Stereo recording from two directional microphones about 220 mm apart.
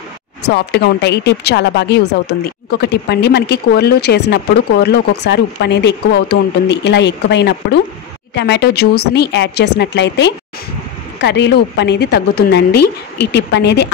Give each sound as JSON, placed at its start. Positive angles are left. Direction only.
{"t": 0.5, "sound": "speech", "side_deg": 50}